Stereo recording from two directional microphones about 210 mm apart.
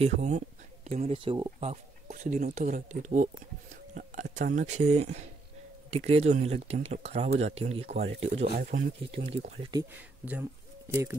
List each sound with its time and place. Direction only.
0.0 s speech: 35° right (ahead or behind)
8.3 s speech: 40° right (ahead or behind)
9.6 s speech: 20° right (ahead or behind)
9.9 s speech: 5° right (ahead or behind)